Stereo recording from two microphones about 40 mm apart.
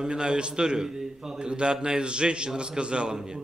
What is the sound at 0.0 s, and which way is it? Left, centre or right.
A man's voice, right.